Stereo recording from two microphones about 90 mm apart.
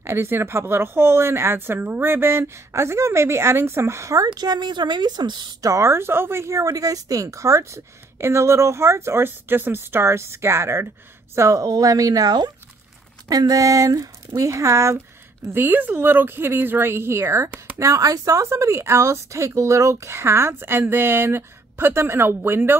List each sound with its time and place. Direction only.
0.0 s speech: 30° right (ahead or behind)
4.3 s a woman's voice: 55° right (ahead or behind)
5.6 s speech: 35° right (ahead or behind)
15.5 s speech: 20° right (ahead or behind)